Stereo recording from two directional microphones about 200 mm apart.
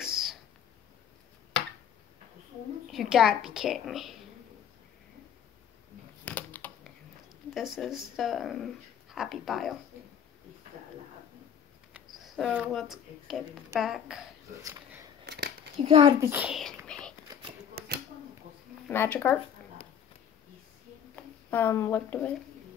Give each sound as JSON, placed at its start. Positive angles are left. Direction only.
{"t": 0.0, "sound": "a sound", "side_deg": 0}
{"t": 2.9, "sound": "a woman's voice", "side_deg": 0}
{"t": 6.2, "sound": "typing", "side_deg": 10}
{"t": 7.5, "sound": "a woman's voice", "side_deg": 0}
{"t": 11.9, "sound": "a sound", "side_deg": 0}
{"t": 13.7, "sound": "a woman's voice", "side_deg": 0}
{"t": 15.2, "sound": "a sound", "side_deg": -55}
{"t": 15.8, "sound": "a child's voice", "side_deg": -25}
{"t": 16.3, "sound": "a woman's voice", "side_deg": -5}
{"t": 16.8, "sound": "whispering", "side_deg": 5}
{"t": 17.7, "sound": "a sound", "side_deg": -50}
{"t": 18.9, "sound": "speech", "side_deg": 10}
{"t": 21.5, "sound": "speech", "side_deg": 10}